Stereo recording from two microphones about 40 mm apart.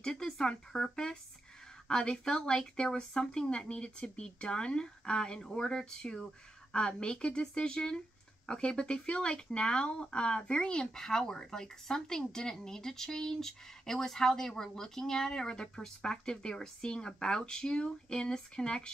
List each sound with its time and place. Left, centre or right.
0.0 s speech: centre